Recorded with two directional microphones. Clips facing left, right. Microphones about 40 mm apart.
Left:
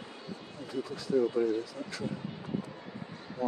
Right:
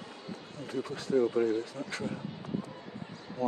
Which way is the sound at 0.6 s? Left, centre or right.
Right.